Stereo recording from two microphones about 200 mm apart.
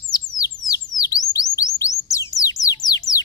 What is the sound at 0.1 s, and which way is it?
Bird, 20° left (ahead or behind).